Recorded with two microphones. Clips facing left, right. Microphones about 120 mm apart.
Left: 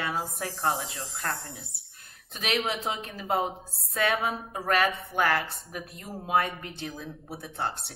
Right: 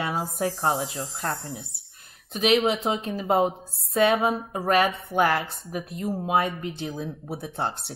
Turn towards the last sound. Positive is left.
turn(degrees=-25)  # may be behind; listen again after turning